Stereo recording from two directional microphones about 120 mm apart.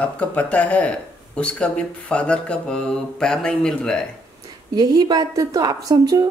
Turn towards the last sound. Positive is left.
turn(degrees=-30)  # may be behind; listen again after turning